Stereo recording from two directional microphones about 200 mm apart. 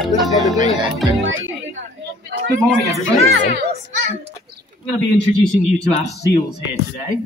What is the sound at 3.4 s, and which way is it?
Speech, 55° right (ahead or behind).